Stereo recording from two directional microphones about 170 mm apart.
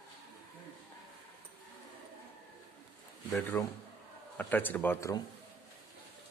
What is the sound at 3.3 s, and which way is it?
Speech, 10° left (ahead or behind).